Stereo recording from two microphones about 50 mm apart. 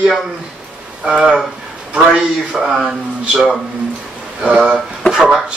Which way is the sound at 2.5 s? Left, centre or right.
Centre.